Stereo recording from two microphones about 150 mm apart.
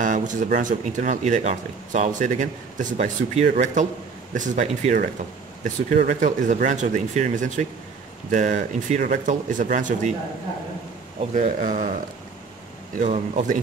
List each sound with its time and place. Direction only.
0.0 s speech: 55° right (ahead or behind)
11.3 s a man's voice: 55° right (ahead or behind)
12.9 s speech: 55° right (ahead or behind)